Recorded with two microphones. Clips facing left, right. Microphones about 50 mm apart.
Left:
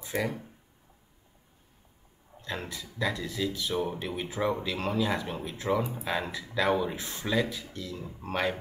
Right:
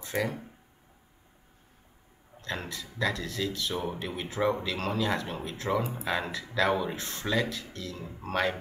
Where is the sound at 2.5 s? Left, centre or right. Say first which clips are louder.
Right 1 dB; centre.